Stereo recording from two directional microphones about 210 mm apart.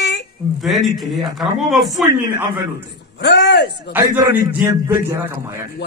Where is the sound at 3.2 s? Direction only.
55° left (ahead or behind).